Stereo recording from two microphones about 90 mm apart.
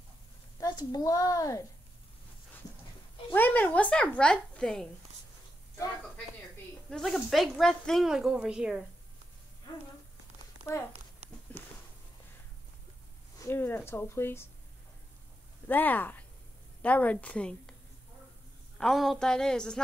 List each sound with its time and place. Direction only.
0.6 s a woman's voice: 45° left (ahead or behind)
3.3 s a child's voice: 20° left (ahead or behind)
6.9 s speech: centre (ahead or behind)
8.1 s a woman's voice: 5° right (ahead or behind)
10.7 s speech: 30° left (ahead or behind)
13.4 s speech: 25° left (ahead or behind)
15.7 s a child's voice: 20° left (ahead or behind)
18.8 s a child's voice: centre (ahead or behind)